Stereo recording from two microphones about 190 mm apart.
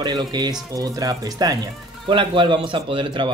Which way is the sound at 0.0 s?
25° right (ahead or behind).